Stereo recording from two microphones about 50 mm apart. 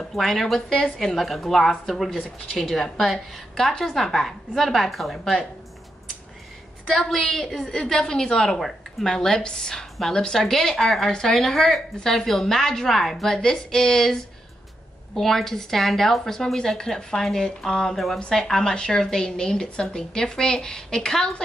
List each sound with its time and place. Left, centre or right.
0.1 s a woman's voice: centre
6.9 s a woman's voice: centre
15.1 s a woman's voice: centre